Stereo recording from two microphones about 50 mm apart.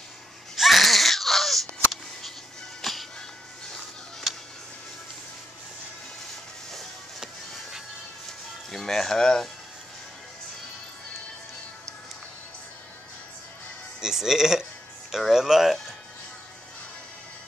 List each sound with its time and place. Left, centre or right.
0.6 s baby cry: centre
2.8 s music: centre
6.7 s music: centre
8.3 s music: centre
14.0 s speech: centre